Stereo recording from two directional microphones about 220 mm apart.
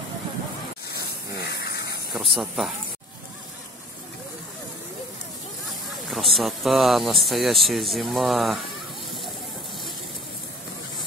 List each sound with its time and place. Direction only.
0.8 s hiss: 50° left (ahead or behind)
2.1 s speech: centre (ahead or behind)
5.7 s speech: centre (ahead or behind)